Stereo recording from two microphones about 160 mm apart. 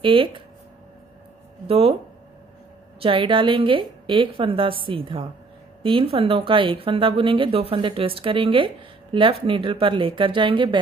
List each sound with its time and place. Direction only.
0.0 s speech: 30° right (ahead or behind)
1.7 s speech: 35° right (ahead or behind)
3.0 s speech: 35° right (ahead or behind)